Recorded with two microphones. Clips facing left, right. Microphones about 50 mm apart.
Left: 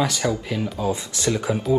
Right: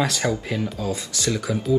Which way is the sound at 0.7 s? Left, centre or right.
Left.